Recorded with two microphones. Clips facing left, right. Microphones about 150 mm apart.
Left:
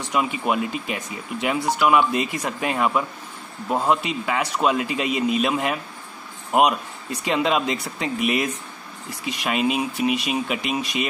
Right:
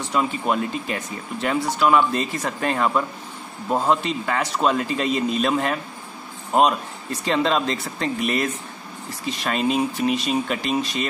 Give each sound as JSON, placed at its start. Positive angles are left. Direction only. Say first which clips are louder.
{"t": 0.1, "sound": "speech", "louder": "even", "side_deg": 10}